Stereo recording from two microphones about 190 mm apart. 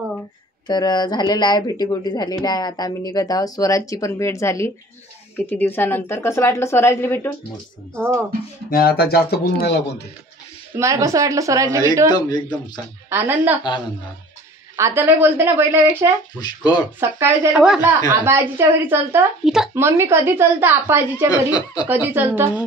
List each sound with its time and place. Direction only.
0.7 s a woman's voice: 20° left (ahead or behind)
8.0 s speech: 10° right (ahead or behind)
8.6 s speech: 50° left (ahead or behind)
10.8 s speech: 15° right (ahead or behind)
12.1 s speech: 20° left (ahead or behind)
13.1 s speech: 10° right (ahead or behind)
13.6 s speech: 25° left (ahead or behind)
14.8 s speech: 15° right (ahead or behind)
16.3 s speech: 20° left (ahead or behind)
17.0 s speech: 10° right (ahead or behind)
19.7 s speech: 15° right (ahead or behind)
21.3 s speech: 20° left (ahead or behind)
21.8 s speech: 10° right (ahead or behind)